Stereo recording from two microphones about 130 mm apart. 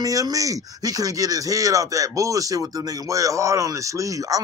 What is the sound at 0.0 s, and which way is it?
Speech, 25° right (ahead or behind).